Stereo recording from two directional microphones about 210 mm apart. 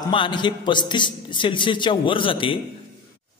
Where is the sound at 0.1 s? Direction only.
25° left (ahead or behind).